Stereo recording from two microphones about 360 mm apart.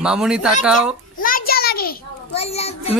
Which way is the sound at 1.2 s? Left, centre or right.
Left.